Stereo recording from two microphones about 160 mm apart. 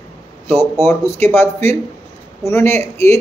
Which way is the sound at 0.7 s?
15° left (ahead or behind).